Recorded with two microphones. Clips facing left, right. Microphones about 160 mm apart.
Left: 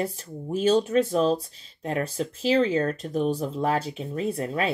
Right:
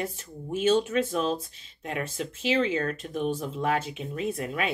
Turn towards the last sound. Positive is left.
turn(degrees=35)  # may be behind; listen again after turning